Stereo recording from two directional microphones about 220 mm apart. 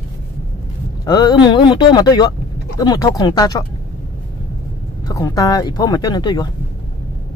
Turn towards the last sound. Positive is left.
turn(degrees=20)  # may be behind; listen again after turning